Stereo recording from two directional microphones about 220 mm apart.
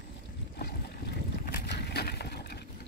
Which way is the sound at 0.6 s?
45° left (ahead or behind).